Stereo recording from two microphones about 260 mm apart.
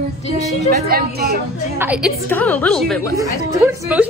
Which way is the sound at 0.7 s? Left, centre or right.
Right.